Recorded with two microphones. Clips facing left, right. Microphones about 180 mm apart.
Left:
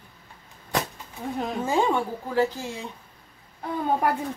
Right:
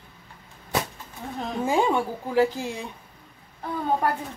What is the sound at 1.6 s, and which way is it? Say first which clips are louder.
Speech: right 2 dB; 15° right (ahead or behind).